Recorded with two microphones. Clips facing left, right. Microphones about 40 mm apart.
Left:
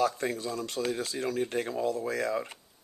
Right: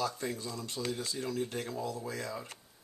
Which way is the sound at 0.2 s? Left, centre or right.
Left.